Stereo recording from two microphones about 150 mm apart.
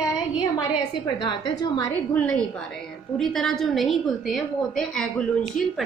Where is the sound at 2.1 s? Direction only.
5° left (ahead or behind).